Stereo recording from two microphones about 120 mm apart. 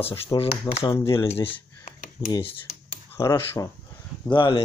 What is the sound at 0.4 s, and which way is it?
Speech, 55° left (ahead or behind).